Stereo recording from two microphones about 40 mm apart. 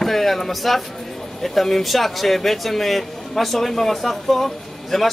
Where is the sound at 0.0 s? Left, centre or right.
Centre.